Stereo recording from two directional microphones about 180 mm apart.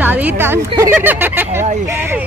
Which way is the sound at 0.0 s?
10° right (ahead or behind).